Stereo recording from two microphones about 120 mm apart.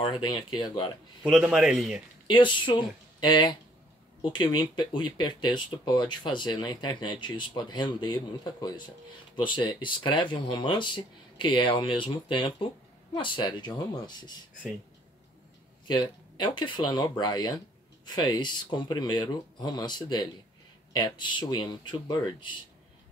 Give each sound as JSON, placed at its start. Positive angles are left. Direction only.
{"t": 0.0, "sound": "speech", "side_deg": 40}
{"t": 1.3, "sound": "a man's voice", "side_deg": -5}
{"t": 2.2, "sound": "speech", "side_deg": 40}
{"t": 15.9, "sound": "speech", "side_deg": 40}